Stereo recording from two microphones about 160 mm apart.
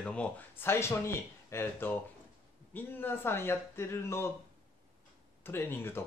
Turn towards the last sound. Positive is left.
turn(degrees=15)  # may be behind; listen again after turning